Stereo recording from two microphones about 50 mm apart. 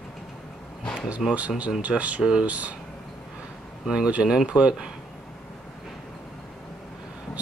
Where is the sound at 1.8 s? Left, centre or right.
Right.